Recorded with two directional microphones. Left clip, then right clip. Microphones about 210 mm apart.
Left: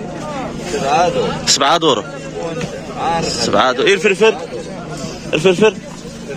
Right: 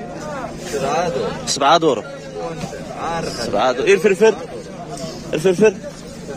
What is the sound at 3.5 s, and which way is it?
A man's voice, 5° right (ahead or behind).